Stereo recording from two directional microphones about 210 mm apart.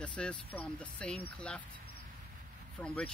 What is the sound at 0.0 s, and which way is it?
Speech, 5° left (ahead or behind).